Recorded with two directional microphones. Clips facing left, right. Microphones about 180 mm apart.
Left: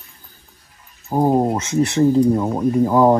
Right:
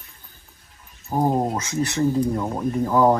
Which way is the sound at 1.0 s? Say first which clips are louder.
Left 5 dB; 20° left (ahead or behind).